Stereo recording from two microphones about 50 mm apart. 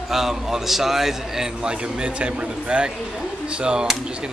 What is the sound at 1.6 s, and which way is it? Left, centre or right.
A man's voice, centre.